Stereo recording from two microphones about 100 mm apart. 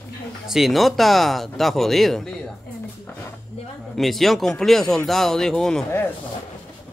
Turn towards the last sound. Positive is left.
turn(degrees=5)  # may be behind; listen again after turning